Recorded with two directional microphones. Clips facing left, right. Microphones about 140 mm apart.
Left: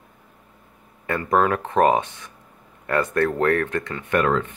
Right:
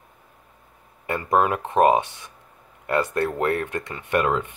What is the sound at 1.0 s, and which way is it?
Speech, 20° right (ahead or behind).